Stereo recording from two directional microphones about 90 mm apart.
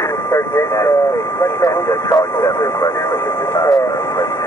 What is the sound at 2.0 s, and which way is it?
Speech, 50° left (ahead or behind).